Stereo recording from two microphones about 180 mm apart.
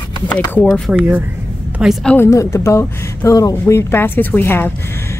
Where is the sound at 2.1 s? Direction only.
15° left (ahead or behind).